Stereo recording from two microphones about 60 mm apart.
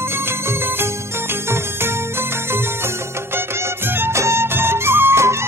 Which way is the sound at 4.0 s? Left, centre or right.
Right.